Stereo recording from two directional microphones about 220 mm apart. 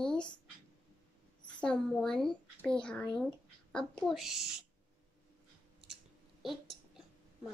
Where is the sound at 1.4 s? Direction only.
5° left (ahead or behind).